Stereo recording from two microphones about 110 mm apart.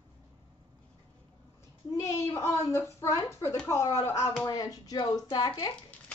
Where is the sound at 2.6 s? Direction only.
25° left (ahead or behind).